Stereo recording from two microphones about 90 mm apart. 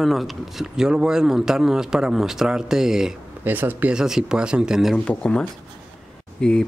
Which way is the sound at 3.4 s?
20° right (ahead or behind).